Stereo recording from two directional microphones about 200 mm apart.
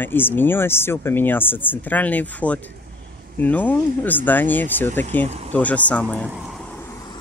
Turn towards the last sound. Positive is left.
turn(degrees=-5)  # may be behind; listen again after turning